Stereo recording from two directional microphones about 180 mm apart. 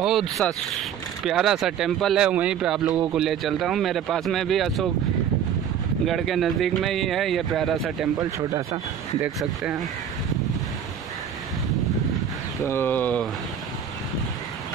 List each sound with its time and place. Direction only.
0.0 s speech: centre (ahead or behind)
6.0 s speech: centre (ahead or behind)
8.2 s speech: 20° right (ahead or behind)
9.2 s speech: 5° right (ahead or behind)
12.6 s speech: 10° left (ahead or behind)